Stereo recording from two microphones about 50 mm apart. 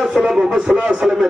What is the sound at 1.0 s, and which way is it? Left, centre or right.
Speech, centre.